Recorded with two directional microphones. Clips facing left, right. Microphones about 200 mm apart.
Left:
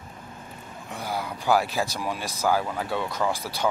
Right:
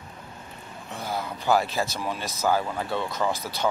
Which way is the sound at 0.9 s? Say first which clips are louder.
Even; 10° left (ahead or behind).